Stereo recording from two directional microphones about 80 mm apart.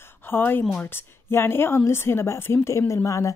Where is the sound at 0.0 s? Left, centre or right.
Left.